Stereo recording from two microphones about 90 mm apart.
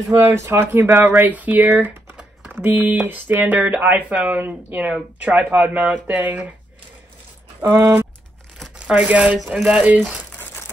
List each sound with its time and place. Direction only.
0.1 s speech: 30° right (ahead or behind)
7.6 s speech: 35° right (ahead or behind)
8.7 s speech: 15° right (ahead or behind)